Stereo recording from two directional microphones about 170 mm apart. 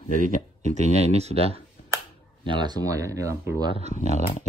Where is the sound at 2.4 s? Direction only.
25° right (ahead or behind).